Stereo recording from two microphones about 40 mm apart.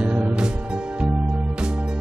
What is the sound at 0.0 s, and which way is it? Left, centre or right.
Music, right.